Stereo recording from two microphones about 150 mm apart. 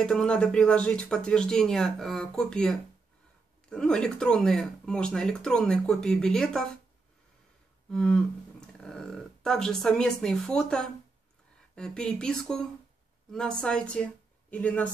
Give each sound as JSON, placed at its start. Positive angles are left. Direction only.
{"t": 0.0, "sound": "speech", "side_deg": 5}
{"t": 7.9, "sound": "a woman's voice", "side_deg": 5}